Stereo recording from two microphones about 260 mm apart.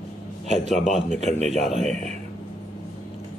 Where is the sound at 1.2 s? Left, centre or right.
Right.